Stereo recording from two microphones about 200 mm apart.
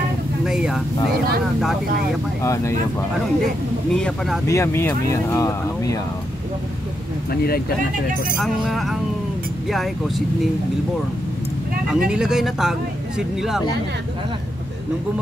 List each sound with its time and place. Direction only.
0.5 s speech: 5° right (ahead or behind)
2.4 s speech: 15° left (ahead or behind)
3.9 s speech: 5° left (ahead or behind)
4.5 s speech: 15° left (ahead or behind)
7.2 s speech: 50° left (ahead or behind)
8.4 s speech: centre (ahead or behind)
11.9 s speech: 5° right (ahead or behind)